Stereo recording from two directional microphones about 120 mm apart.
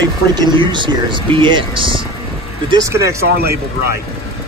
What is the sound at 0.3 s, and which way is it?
Speech, 35° right (ahead or behind).